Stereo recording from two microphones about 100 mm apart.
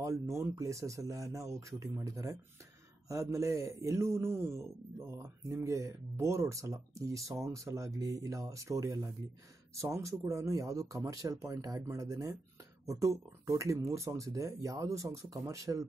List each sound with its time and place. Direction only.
0.4 s a man's voice: 30° right (ahead or behind)